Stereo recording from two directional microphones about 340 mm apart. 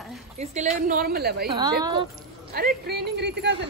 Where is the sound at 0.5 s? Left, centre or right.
Right.